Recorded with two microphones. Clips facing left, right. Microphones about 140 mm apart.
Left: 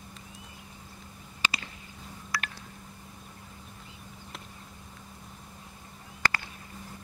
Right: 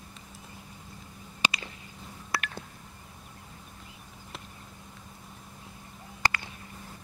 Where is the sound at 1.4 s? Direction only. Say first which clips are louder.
Right 2 dB; 15° right (ahead or behind).